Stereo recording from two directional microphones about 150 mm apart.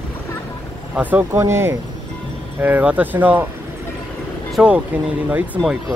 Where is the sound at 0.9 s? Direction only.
10° right (ahead or behind).